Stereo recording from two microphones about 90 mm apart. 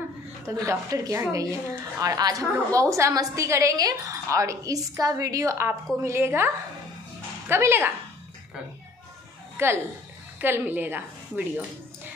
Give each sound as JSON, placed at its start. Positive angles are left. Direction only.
{"t": 0.6, "sound": "a woman's voice", "side_deg": -40}
{"t": 9.6, "sound": "a woman's voice", "side_deg": -25}